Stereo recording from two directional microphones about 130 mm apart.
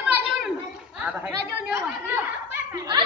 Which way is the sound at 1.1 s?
10° right (ahead or behind).